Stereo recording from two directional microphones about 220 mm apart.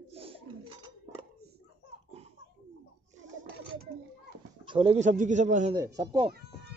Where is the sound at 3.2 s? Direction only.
35° right (ahead or behind).